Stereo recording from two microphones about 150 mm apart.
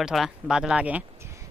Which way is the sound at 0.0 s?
Centre (ahead or behind).